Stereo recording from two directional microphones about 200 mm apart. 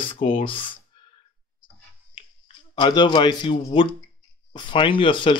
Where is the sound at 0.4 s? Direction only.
25° left (ahead or behind).